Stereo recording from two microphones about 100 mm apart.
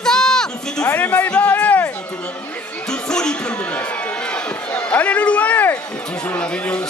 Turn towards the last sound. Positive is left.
turn(degrees=10)  # may be behind; listen again after turning